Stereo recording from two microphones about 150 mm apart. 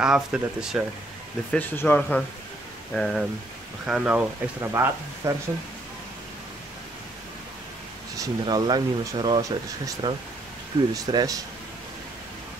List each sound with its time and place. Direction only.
0.0 s speech: 5° right (ahead or behind)
1.5 s speech: 10° left (ahead or behind); by 5.3 s 20° right (ahead or behind)
8.2 s speech: 25° right (ahead or behind)